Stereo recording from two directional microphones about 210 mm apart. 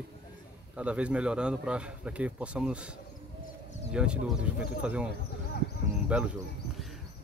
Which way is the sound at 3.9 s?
5° right (ahead or behind).